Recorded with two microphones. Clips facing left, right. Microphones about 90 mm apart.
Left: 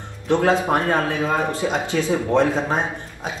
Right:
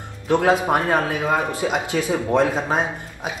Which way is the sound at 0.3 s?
15° right (ahead or behind).